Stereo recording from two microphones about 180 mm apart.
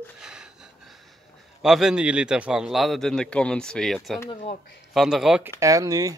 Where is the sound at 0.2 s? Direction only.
5° right (ahead or behind).